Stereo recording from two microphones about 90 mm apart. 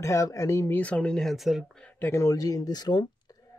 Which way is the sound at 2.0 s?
25° left (ahead or behind).